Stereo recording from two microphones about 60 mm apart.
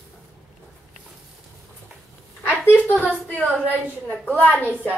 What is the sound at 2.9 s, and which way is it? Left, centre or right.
Speech, left.